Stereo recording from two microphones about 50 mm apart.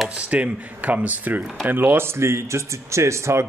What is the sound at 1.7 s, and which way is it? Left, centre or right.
Speech, right.